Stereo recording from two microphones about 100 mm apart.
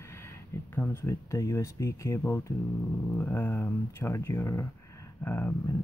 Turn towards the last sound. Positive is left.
turn(degrees=25)  # may be behind; listen again after turning